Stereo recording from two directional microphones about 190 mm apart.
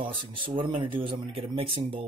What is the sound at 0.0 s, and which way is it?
Speech, 25° right (ahead or behind).